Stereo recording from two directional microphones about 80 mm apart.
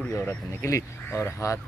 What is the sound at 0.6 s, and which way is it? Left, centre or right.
Speech, left.